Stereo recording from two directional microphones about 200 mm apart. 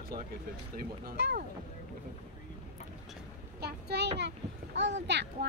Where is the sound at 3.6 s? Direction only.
55° right (ahead or behind).